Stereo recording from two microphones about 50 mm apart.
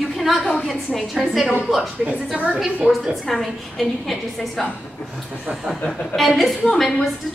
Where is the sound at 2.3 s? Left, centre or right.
Right.